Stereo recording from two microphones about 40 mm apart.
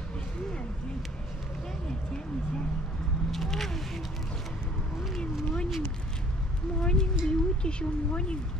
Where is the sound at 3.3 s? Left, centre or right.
Centre.